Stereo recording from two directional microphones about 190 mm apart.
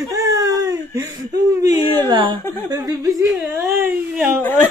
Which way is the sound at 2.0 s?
25° right (ahead or behind).